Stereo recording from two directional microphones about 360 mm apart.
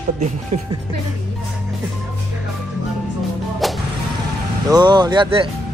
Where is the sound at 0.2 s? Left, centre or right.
Centre.